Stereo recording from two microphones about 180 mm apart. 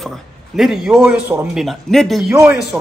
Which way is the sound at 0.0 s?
Centre (ahead or behind).